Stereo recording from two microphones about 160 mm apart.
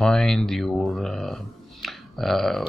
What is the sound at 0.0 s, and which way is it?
Speech, 5° left (ahead or behind).